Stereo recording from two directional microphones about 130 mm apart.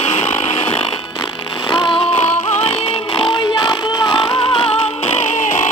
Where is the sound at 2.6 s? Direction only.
40° left (ahead or behind).